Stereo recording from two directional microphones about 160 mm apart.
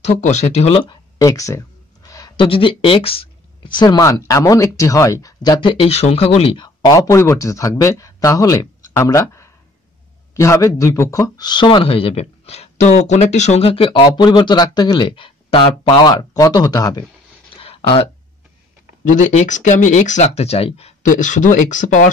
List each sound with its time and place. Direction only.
0.0 s a man's voice: 45° left (ahead or behind); by 17.0 s 25° left (ahead or behind)
17.6 s a sound: 35° left (ahead or behind)
19.1 s speech: 50° left (ahead or behind)
21.1 s speech: 50° left (ahead or behind)